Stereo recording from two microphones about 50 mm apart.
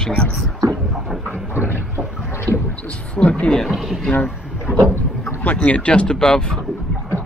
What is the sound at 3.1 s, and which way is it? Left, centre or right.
Speech, left.